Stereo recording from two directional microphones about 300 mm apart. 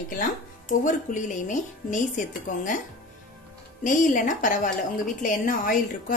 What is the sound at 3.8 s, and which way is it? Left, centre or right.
A woman's voice, left.